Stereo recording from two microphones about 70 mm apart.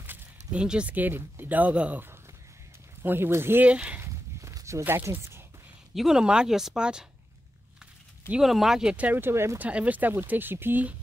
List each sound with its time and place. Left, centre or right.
0.5 s speech: centre
3.0 s speech: right
3.6 s speech: centre
4.0 s walk: right
5.1 s speech: right
5.9 s speech: centre
8.4 s speech: centre
8.9 s speech: right
9.2 s speech: right
9.6 s speech: centre